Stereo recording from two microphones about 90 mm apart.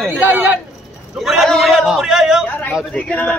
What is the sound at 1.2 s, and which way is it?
Speech, centre (ahead or behind).